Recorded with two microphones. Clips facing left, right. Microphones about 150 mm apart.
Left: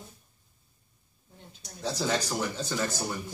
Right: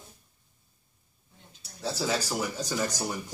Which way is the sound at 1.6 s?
5° right (ahead or behind).